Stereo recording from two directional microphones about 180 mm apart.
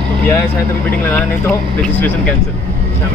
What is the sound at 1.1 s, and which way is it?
Speech, 10° left (ahead or behind).